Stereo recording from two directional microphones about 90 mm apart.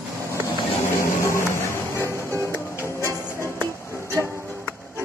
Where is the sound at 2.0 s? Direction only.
30° right (ahead or behind).